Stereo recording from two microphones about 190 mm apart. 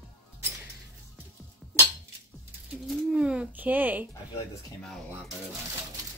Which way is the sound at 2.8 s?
5° right (ahead or behind).